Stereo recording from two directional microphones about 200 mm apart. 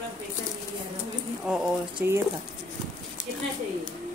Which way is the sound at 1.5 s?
10° right (ahead or behind).